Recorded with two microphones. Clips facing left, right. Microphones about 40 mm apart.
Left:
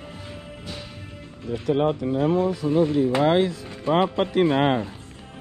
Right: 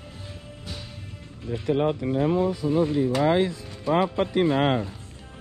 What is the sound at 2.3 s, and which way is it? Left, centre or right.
Speech, left.